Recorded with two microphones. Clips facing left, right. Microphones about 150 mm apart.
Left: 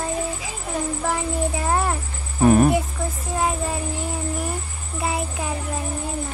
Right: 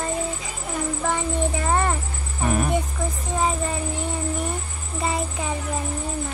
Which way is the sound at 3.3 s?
5° left (ahead or behind).